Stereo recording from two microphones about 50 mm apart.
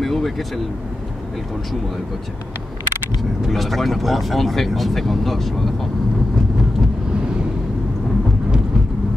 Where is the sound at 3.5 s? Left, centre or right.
Centre.